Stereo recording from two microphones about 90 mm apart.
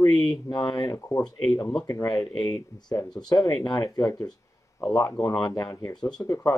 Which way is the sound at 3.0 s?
50° left (ahead or behind).